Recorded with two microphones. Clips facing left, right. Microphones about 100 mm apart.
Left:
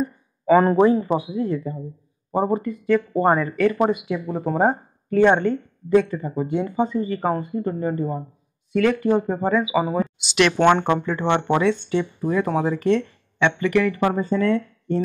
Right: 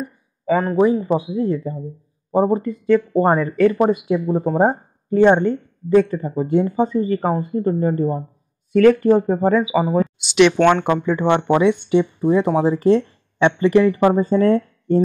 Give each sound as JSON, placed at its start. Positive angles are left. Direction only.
{"t": 0.5, "sound": "speech", "side_deg": 5}
{"t": 1.1, "sound": "speech", "side_deg": -25}
{"t": 9.9, "sound": "speech", "side_deg": 5}
{"t": 11.1, "sound": "speech", "side_deg": -15}
{"t": 14.2, "sound": "speech", "side_deg": -35}